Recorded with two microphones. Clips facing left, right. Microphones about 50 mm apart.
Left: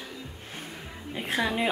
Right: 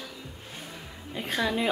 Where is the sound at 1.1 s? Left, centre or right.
Centre.